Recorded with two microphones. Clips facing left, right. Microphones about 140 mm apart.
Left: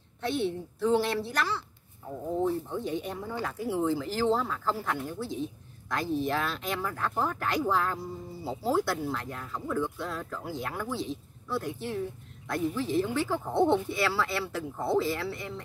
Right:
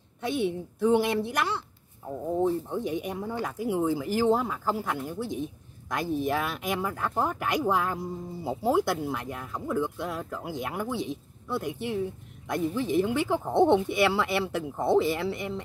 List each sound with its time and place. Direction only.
0.2 s speech: 10° right (ahead or behind)